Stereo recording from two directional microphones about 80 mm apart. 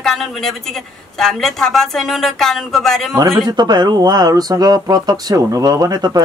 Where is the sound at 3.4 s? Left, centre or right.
Right.